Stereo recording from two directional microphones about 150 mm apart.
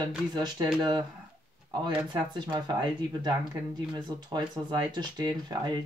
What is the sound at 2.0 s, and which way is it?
Speech, 30° right (ahead or behind).